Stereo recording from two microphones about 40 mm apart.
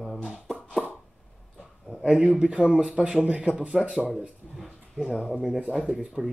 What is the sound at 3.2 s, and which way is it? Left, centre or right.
Speech, right.